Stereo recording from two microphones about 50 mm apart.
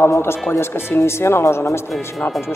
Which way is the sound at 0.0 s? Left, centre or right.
Left.